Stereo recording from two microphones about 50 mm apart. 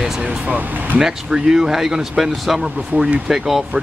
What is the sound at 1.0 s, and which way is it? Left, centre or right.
Speech, centre.